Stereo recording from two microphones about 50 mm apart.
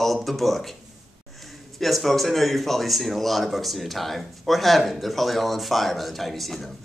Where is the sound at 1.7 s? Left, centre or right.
Centre.